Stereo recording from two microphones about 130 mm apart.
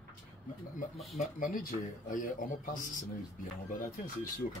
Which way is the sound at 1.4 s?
90° left.